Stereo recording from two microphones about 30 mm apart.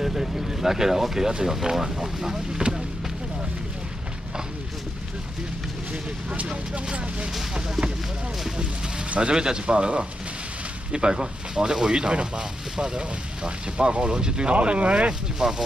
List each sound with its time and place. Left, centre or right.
0.0 s boat: centre
0.4 s speech: centre
6.5 s speech: right
9.3 s speech: right
14.5 s speech: right
15.3 s speech: right